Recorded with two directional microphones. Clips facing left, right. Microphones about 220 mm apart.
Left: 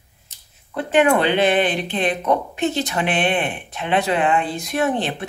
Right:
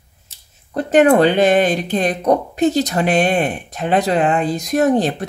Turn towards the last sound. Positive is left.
turn(degrees=-40)  # may be behind; listen again after turning